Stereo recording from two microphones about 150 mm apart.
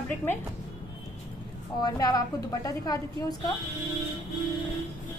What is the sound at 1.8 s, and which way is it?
A woman's voice, 25° left (ahead or behind).